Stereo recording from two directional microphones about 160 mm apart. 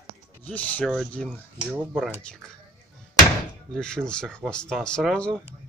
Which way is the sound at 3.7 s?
5° left (ahead or behind).